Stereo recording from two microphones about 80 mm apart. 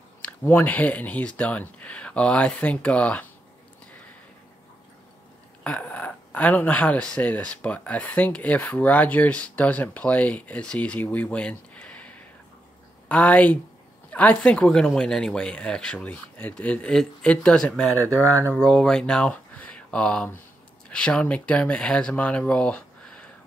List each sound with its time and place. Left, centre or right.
0.5 s speech: left
5.6 s speech: centre
19.5 s a sound: centre
20.9 s speech: centre